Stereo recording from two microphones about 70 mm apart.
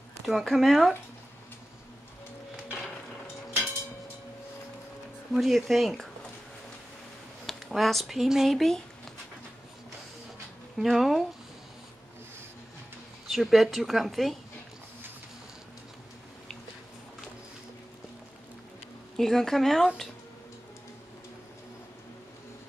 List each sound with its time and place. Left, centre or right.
0.3 s a woman's voice: centre
5.3 s a woman's voice: centre
7.4 s speech: centre
10.8 s a woman's voice: centre
13.3 s a woman's voice: centre
19.1 s a woman's voice: centre